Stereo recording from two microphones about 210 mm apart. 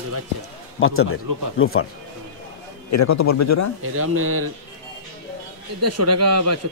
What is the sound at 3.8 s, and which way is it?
Speech, 90° right.